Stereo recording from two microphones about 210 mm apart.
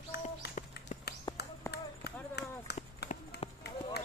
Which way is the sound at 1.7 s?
50° left (ahead or behind).